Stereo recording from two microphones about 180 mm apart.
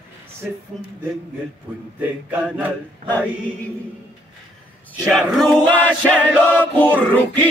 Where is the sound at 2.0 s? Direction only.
10° right (ahead or behind).